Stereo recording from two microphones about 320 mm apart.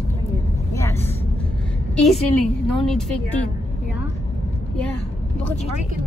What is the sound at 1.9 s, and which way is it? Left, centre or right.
A woman's voice, centre.